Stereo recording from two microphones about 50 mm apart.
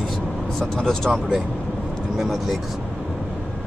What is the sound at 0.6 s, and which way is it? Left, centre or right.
Speech, centre.